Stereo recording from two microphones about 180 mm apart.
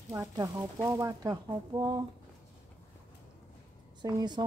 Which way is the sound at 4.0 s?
20° right (ahead or behind).